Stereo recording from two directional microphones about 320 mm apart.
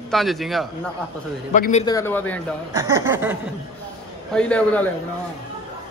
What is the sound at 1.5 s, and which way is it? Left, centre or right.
Speech, left.